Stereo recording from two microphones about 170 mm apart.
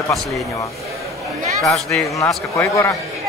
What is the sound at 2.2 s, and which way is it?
Speech, 20° left (ahead or behind).